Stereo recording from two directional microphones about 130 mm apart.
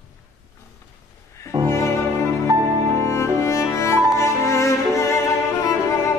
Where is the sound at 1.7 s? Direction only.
20° left (ahead or behind).